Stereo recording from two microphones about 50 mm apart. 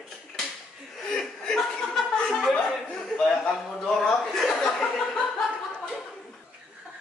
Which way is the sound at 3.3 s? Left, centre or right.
Centre.